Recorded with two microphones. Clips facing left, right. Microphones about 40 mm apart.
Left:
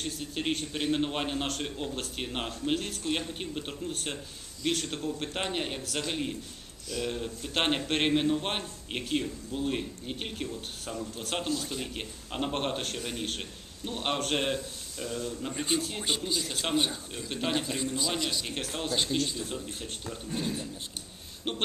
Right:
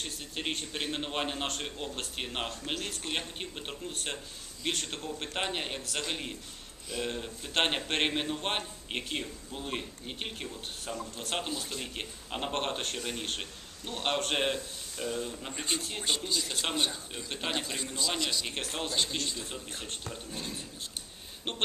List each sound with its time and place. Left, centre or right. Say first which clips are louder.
0.0 s a man's voice: left 3 dB; centre
15.6 s a man's voice: left 3 dB; centre
21.5 s a man's voice: left 3 dB; centre